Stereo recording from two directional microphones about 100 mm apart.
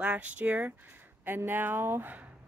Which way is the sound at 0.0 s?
15° right (ahead or behind).